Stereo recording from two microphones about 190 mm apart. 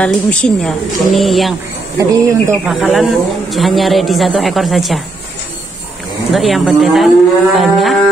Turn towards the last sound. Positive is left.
turn(degrees=0)  # may be behind; listen again after turning